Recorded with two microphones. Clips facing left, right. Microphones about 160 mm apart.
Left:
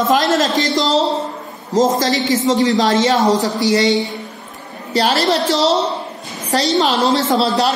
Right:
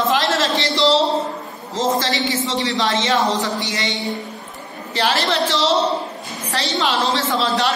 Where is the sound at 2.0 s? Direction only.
45° left (ahead or behind).